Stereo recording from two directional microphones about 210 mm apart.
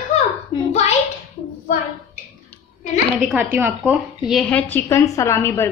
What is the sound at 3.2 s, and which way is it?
A woman's voice, 5° right (ahead or behind).